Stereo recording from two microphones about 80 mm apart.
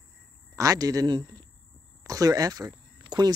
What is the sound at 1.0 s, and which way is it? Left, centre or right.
Speech, right.